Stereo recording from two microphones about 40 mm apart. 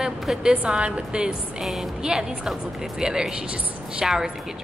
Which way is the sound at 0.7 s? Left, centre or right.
Right.